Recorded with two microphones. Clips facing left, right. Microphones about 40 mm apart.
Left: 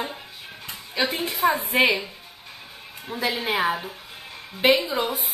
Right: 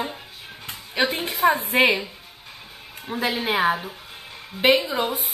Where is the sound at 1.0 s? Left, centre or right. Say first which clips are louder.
Right 2 dB; centre.